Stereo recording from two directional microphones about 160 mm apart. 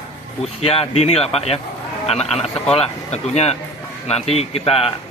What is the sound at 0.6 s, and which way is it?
A man's voice, 40° left (ahead or behind).